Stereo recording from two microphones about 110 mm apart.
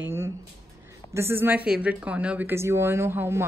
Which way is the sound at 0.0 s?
25° right (ahead or behind).